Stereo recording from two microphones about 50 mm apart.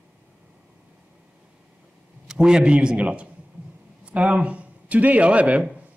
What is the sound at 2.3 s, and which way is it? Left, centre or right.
A man's voice, centre.